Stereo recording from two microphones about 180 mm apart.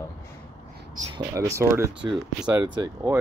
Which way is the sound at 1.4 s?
15° right (ahead or behind).